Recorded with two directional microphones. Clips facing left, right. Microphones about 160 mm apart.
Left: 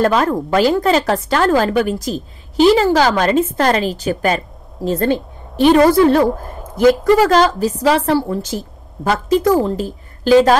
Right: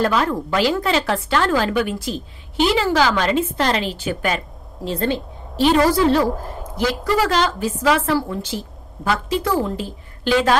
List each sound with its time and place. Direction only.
0.0 s a woman's voice: 45° left (ahead or behind)